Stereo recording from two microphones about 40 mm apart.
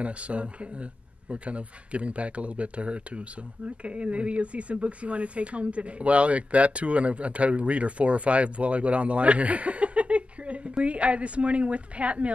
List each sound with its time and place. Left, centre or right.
0.0 s speech: right